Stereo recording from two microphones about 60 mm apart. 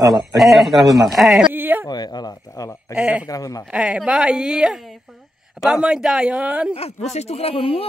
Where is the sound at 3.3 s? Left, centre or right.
Left.